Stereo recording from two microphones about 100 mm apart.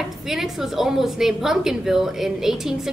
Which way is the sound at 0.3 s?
5° right (ahead or behind).